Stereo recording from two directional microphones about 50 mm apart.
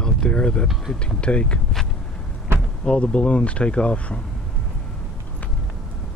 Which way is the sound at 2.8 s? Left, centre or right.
Left.